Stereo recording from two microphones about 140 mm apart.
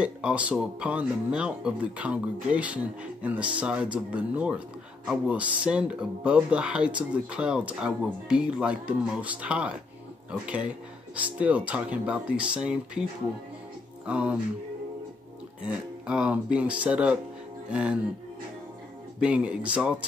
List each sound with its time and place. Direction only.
0.0 s speech: 10° right (ahead or behind)
14.0 s speech: 10° right (ahead or behind)
16.1 s speech: 5° right (ahead or behind)
19.1 s speech: 10° right (ahead or behind)